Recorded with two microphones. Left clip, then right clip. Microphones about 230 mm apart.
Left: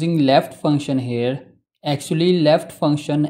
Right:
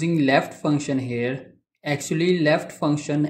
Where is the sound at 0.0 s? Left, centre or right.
Left.